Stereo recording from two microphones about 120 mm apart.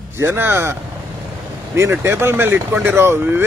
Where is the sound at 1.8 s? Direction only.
20° right (ahead or behind).